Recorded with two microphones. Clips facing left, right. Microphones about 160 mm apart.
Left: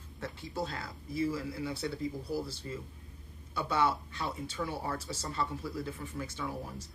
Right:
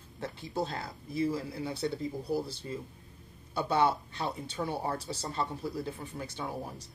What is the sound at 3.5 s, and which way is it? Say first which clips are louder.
Speech: right 3 dB; 20° right (ahead or behind).